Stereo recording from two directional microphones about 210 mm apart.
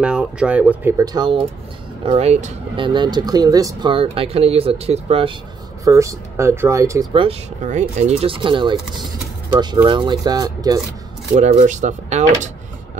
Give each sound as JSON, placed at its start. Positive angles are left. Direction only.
{"t": 0.0, "sound": "speech", "side_deg": -5}
{"t": 5.9, "sound": "speech", "side_deg": -15}
{"t": 7.2, "sound": "speech", "side_deg": -35}
{"t": 8.2, "sound": "speech", "side_deg": -25}
{"t": 9.8, "sound": "speech", "side_deg": -20}
{"t": 11.3, "sound": "speech", "side_deg": -35}